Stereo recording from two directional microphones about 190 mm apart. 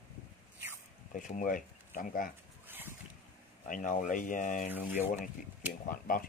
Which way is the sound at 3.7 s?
45° left (ahead or behind).